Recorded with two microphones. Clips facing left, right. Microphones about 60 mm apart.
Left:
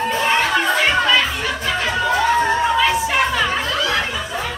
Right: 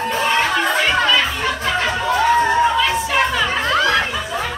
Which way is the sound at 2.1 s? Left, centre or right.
Centre.